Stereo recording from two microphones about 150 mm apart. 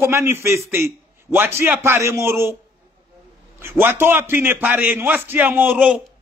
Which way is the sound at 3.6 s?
15° right (ahead or behind).